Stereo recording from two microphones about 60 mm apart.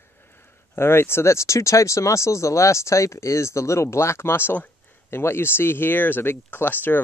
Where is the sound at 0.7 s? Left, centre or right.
Left.